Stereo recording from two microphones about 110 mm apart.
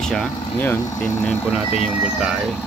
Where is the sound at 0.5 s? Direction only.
20° left (ahead or behind).